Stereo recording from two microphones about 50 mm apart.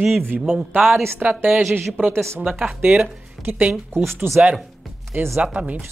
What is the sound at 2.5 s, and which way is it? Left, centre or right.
Speech, right.